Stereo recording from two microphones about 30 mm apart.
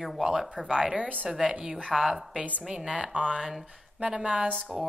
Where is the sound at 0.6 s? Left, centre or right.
Right.